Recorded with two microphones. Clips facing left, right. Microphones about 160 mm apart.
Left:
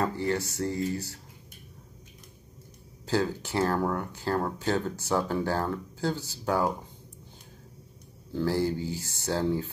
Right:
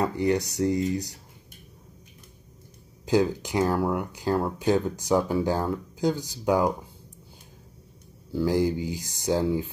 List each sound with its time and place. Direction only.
0.0 s speech: 15° right (ahead or behind)
3.1 s speech: 15° right (ahead or behind)
8.3 s speech: 10° right (ahead or behind)